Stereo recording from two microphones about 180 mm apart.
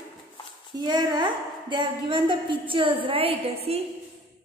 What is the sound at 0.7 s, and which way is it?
A woman's voice, 20° right (ahead or behind).